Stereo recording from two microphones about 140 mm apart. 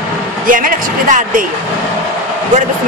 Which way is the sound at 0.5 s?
75° right (ahead or behind).